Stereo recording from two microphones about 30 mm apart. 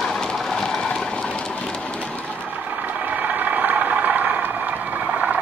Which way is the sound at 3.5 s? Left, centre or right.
Right.